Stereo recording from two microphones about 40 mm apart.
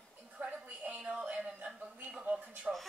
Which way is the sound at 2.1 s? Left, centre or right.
Right.